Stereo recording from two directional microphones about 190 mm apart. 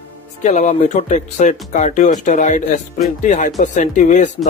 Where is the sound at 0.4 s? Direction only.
35° left (ahead or behind).